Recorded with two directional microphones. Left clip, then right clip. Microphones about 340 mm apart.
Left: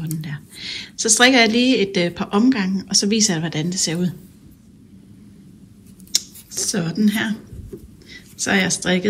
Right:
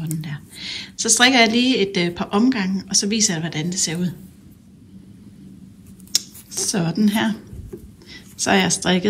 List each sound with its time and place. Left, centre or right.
0.2 s a woman's voice: centre
6.1 s scissors: centre
8.1 s speech: centre